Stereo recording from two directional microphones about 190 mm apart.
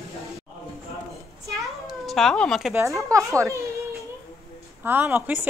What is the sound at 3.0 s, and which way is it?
Speech, 15° right (ahead or behind).